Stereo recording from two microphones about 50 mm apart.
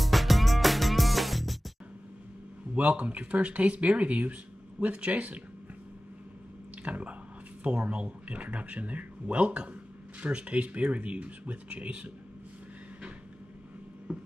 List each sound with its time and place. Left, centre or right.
0.0 s music: centre
2.7 s speech: right
6.8 s speech: right